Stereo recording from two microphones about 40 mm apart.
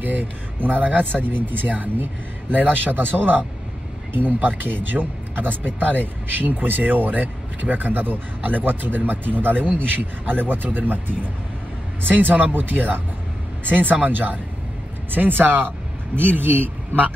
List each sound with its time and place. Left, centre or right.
0.0 s speech: right